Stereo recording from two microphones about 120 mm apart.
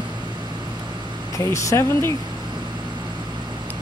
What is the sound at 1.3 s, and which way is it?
Speech, 25° left (ahead or behind).